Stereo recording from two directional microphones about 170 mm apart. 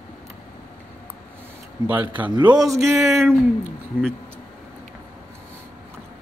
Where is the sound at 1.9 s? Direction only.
10° right (ahead or behind).